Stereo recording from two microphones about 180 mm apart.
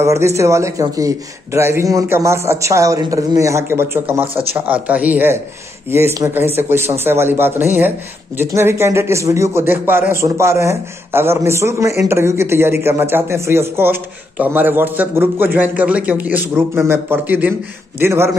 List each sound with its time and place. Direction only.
0.0 s a man's voice: 15° right (ahead or behind)